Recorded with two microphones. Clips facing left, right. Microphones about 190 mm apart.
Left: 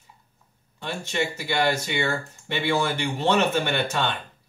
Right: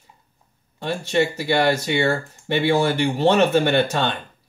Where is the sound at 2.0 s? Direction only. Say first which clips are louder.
Right 6 dB; 50° right (ahead or behind).